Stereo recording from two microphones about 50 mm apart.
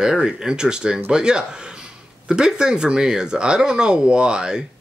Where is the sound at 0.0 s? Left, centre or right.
Centre.